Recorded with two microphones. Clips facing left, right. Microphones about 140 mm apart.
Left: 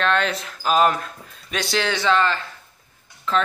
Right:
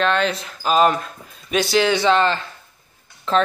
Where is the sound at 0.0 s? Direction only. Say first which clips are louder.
Right 2 dB; centre (ahead or behind).